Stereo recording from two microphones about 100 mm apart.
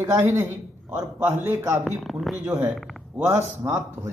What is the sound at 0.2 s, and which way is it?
Speech, 25° right (ahead or behind).